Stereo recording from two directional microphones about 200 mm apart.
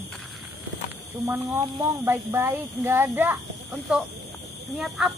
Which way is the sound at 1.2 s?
10° right (ahead or behind).